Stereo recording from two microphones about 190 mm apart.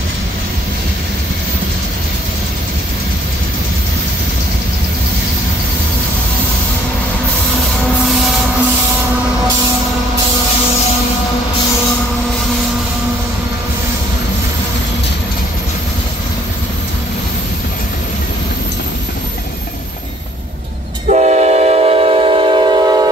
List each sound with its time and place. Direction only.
21.1 s train: 40° right (ahead or behind); by 23.0 s 25° right (ahead or behind)